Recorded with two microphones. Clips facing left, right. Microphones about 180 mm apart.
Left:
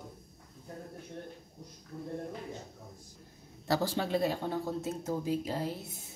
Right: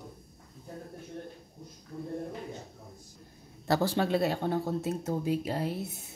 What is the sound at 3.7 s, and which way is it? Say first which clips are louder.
Speech: right 3 dB; 65° right (ahead or behind).